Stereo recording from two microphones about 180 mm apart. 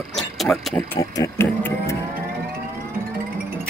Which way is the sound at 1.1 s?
15° left (ahead or behind).